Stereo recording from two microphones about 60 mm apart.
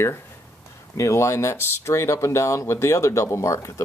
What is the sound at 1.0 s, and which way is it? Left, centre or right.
Speech, left.